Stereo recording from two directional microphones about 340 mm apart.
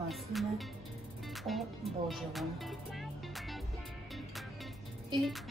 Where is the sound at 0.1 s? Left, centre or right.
Centre.